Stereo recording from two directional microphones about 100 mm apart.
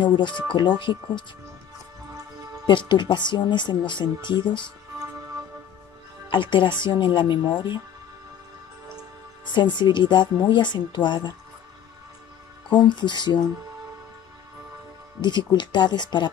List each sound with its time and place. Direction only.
0.0 s speech: 50° left (ahead or behind)
2.6 s speech: 50° left (ahead or behind)
6.3 s speech: 55° left (ahead or behind)
9.5 s speech: 50° left (ahead or behind)
12.6 s speech: 50° left (ahead or behind)
15.2 s speech: 50° left (ahead or behind)